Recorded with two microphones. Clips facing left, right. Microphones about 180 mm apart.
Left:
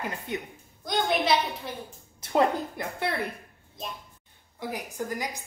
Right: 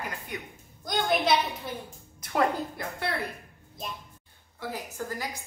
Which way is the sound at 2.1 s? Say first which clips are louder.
Left 5 dB; 25° left (ahead or behind).